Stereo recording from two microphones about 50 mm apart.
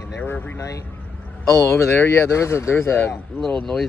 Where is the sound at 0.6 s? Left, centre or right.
Left.